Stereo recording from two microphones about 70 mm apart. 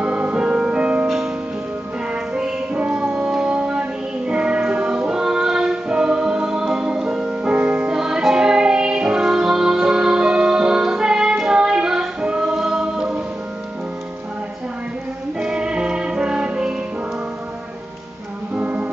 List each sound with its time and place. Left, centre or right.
0.0 s music: centre
2.7 s music: right
7.9 s music: centre
15.4 s music: centre
18.5 s music: right